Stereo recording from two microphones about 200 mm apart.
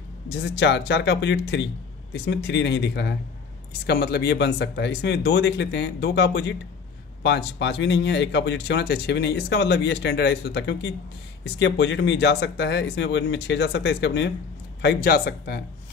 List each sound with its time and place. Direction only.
0.3 s speech: 60° left (ahead or behind)